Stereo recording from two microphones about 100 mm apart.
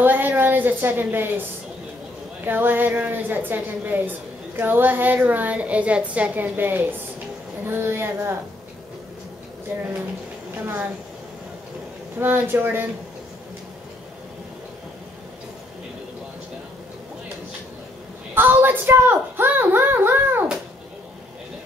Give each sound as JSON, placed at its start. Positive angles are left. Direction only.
{"t": 0.0, "sound": "a sound", "side_deg": -20}
{"t": 2.4, "sound": "a woman's voice", "side_deg": -20}
{"t": 9.7, "sound": "a woman's voice", "side_deg": -20}
{"t": 12.2, "sound": "a woman's voice", "side_deg": -20}
{"t": 18.3, "sound": "a woman's voice", "side_deg": -20}